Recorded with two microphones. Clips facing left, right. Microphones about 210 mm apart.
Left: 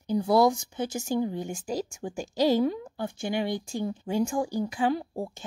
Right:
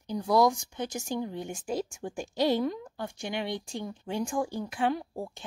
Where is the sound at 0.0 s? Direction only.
5° left (ahead or behind).